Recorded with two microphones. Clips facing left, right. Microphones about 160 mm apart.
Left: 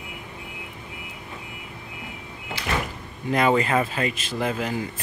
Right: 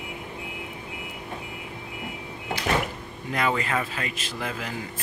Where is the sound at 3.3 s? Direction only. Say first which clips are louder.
Left 6 dB; 25° left (ahead or behind).